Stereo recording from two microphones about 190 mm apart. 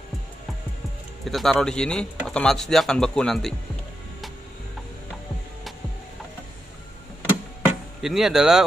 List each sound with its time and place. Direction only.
1.2 s speech: centre (ahead or behind)
8.0 s speech: centre (ahead or behind)